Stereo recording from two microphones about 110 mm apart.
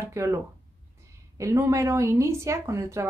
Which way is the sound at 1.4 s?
25° right (ahead or behind).